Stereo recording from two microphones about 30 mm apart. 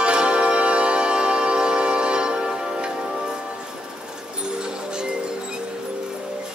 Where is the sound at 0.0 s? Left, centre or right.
Right.